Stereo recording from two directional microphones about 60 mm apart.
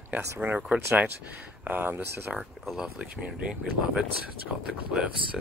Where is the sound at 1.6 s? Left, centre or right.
Right.